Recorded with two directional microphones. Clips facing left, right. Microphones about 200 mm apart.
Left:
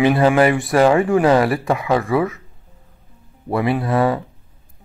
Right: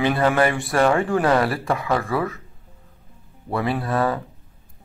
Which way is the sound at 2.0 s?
20° left (ahead or behind).